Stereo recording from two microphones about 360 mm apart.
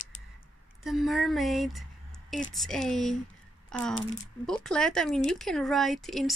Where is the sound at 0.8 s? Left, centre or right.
Centre.